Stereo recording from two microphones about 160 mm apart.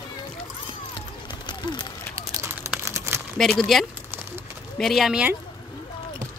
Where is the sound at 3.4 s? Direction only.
Centre (ahead or behind).